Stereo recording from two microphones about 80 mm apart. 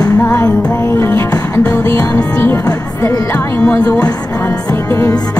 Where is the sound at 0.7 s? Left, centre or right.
Left.